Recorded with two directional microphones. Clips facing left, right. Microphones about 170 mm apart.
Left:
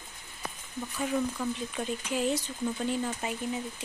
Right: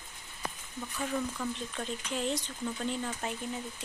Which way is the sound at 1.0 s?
5° left (ahead or behind).